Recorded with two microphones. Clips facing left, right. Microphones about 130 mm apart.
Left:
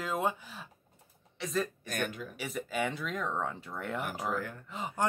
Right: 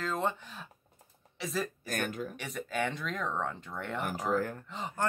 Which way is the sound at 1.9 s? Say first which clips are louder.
Right 2 dB; 45° right (ahead or behind).